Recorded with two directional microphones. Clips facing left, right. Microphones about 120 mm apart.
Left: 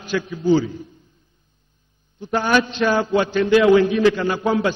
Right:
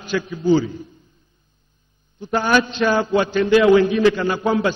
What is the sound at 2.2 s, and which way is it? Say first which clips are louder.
A man's voice: right 1 dB; 30° right (ahead or behind).